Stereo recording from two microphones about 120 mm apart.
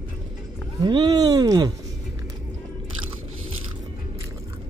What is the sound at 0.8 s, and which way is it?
Speech, 35° right (ahead or behind).